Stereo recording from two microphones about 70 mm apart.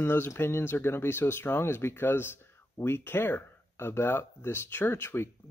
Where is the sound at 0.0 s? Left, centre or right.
Left.